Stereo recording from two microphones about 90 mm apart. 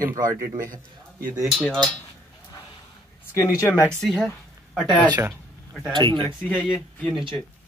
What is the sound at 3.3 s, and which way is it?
Speech, 35° left (ahead or behind).